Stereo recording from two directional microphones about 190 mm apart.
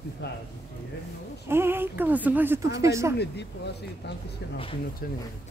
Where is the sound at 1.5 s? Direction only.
10° right (ahead or behind).